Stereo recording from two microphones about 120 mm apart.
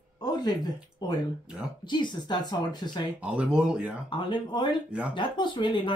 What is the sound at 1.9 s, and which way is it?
Speech, 40° left (ahead or behind).